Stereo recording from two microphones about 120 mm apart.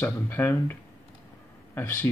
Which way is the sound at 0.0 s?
15° left (ahead or behind).